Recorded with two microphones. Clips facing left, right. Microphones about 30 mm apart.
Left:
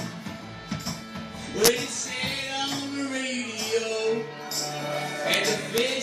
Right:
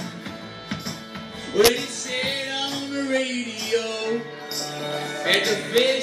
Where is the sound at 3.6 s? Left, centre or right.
Right.